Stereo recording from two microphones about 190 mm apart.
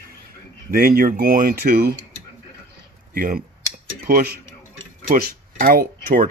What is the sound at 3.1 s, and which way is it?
Speech, 50° right (ahead or behind).